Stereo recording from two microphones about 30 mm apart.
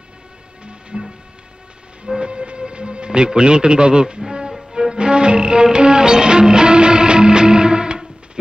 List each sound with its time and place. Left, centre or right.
0.7 s music: right
2.1 s music: right